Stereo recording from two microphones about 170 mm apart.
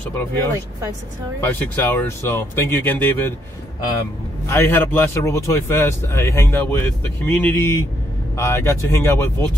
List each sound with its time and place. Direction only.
0.1 s speech: 15° left (ahead or behind)
4.5 s speech: 15° left (ahead or behind)